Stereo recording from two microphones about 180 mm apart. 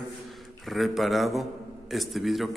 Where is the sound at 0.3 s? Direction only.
Centre (ahead or behind).